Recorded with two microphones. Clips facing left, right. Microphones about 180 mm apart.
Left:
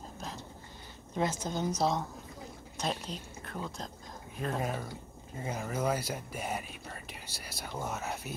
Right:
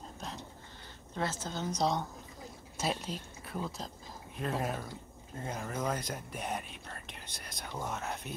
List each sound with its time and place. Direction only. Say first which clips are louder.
1.1 s a woman's voice: left 4 dB; 15° left (ahead or behind)
1.8 s speech: left 1 dB; centre (ahead or behind)